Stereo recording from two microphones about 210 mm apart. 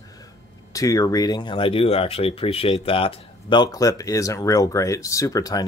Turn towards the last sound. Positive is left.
turn(degrees=15)  # may be behind; listen again after turning